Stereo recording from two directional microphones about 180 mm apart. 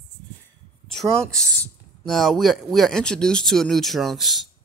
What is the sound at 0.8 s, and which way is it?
Speech, centre (ahead or behind).